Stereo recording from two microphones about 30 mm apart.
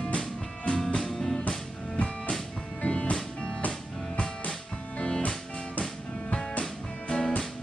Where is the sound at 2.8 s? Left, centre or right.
Left.